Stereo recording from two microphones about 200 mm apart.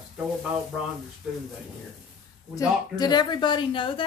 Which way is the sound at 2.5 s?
20° left (ahead or behind).